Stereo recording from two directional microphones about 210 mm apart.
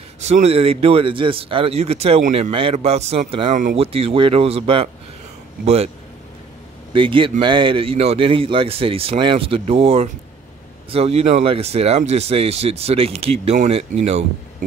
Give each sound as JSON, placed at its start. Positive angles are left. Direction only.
{"t": 0.2, "sound": "speech", "side_deg": -30}
{"t": 6.9, "sound": "speech", "side_deg": -25}